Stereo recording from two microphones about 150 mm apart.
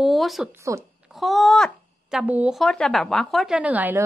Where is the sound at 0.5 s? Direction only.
20° right (ahead or behind).